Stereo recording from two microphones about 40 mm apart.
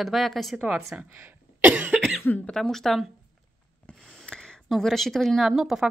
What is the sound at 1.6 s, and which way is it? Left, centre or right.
Cough, right.